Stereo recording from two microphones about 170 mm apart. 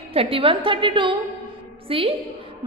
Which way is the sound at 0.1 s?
35° right (ahead or behind).